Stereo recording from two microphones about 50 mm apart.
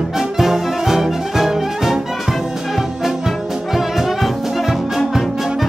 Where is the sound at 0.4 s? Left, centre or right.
Centre.